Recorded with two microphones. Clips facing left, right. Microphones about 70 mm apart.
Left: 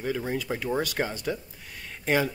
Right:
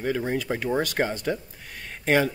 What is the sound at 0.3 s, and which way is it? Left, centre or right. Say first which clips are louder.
Speech: right 3 dB; right.